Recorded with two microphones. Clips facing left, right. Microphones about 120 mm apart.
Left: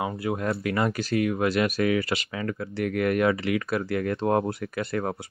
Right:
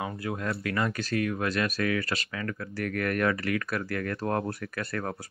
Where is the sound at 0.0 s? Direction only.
25° left (ahead or behind).